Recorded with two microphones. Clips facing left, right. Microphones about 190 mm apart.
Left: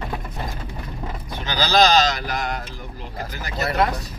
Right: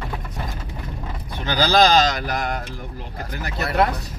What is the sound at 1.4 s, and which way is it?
Speech, 50° right (ahead or behind).